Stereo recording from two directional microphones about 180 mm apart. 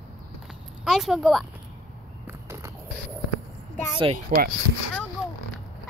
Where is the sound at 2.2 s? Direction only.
15° right (ahead or behind).